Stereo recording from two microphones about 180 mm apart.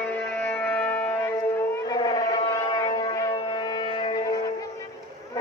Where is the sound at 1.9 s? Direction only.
25° left (ahead or behind).